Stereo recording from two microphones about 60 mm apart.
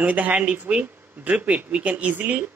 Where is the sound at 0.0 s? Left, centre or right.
Right.